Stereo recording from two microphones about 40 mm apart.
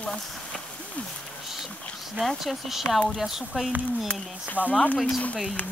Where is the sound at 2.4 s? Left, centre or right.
Centre.